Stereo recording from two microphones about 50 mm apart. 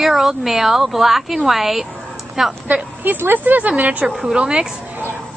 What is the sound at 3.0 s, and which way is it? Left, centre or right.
Speech, right.